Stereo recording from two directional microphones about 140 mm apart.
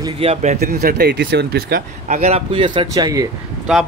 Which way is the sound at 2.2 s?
45° right (ahead or behind).